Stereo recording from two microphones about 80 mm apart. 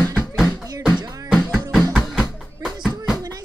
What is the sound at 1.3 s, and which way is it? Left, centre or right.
Music, centre.